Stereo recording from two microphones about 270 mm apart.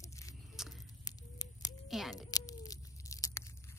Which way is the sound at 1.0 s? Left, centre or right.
Centre.